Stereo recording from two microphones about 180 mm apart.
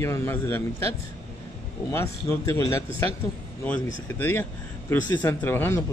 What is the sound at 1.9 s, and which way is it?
Speech, 15° left (ahead or behind).